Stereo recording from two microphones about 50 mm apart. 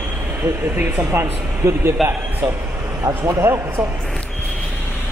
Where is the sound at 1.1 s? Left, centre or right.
Right.